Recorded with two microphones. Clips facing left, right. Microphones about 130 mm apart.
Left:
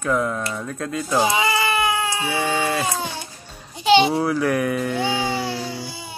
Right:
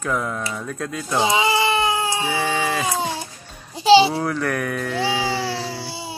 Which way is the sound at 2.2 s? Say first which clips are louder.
Even; centre (ahead or behind).